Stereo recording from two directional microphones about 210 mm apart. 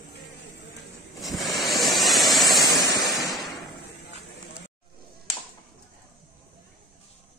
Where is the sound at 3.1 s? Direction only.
Centre (ahead or behind).